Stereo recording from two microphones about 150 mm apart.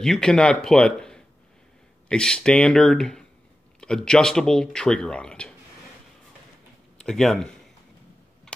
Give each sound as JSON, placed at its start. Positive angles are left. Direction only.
{"t": 0.0, "sound": "speech", "side_deg": 5}
{"t": 7.0, "sound": "speech", "side_deg": 5}
{"t": 8.5, "sound": "a sound", "side_deg": 5}